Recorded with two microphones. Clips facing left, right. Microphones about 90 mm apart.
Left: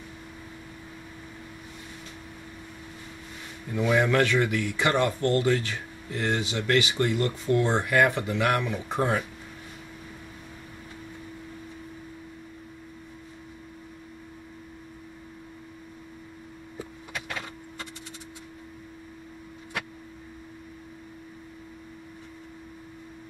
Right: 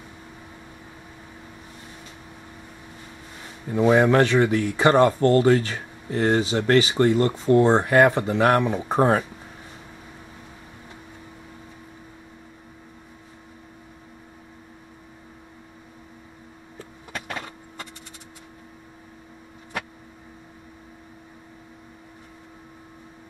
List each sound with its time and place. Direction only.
3.6 s speech: 35° right (ahead or behind)